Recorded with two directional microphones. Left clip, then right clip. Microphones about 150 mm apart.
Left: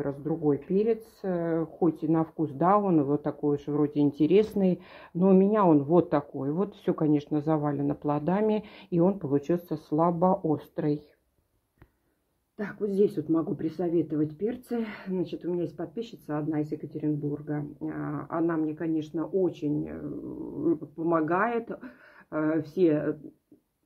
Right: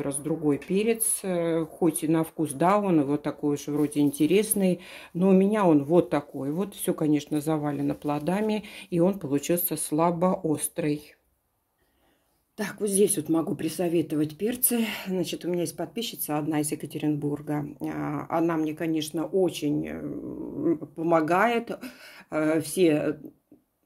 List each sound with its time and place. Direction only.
0.0 s speech: 10° right (ahead or behind)
12.5 s speech: 20° right (ahead or behind)